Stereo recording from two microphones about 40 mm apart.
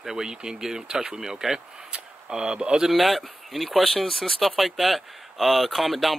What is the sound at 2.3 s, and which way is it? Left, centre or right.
Speech, right.